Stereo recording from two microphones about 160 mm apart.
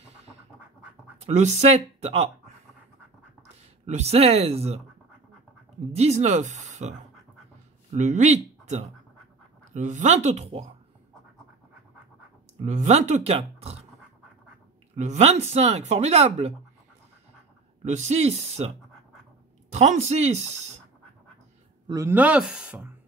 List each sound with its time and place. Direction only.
1.2 s speech: 45° right (ahead or behind)
3.8 s speech: 45° right (ahead or behind)
5.9 s speech: 45° right (ahead or behind)
12.6 s speech: 45° right (ahead or behind)
15.0 s speech: 45° right (ahead or behind)
17.8 s speech: 45° right (ahead or behind)
19.7 s speech: 45° right (ahead or behind)
21.8 s speech: 20° right (ahead or behind)